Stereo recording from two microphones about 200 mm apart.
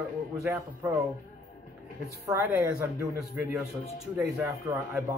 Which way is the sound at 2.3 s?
15° right (ahead or behind).